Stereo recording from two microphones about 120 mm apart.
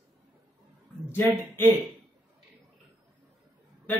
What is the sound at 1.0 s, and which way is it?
Speech, 20° left (ahead or behind).